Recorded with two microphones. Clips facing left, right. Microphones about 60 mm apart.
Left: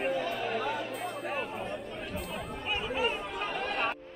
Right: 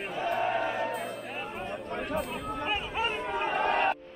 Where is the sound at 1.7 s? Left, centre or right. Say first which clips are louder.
Right 5 dB; right.